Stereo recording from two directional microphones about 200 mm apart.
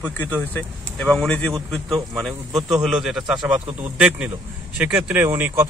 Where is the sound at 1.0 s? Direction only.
5° left (ahead or behind).